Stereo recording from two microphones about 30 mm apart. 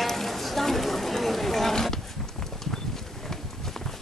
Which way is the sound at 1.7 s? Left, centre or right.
Centre.